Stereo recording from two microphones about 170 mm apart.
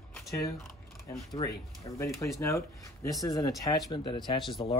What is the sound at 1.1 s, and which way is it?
Speech, 20° left (ahead or behind).